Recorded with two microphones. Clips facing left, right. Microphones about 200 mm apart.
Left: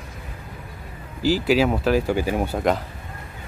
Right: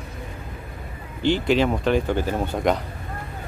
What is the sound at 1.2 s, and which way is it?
Speech, 5° left (ahead or behind).